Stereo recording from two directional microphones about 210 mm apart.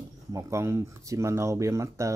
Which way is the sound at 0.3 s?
15° right (ahead or behind).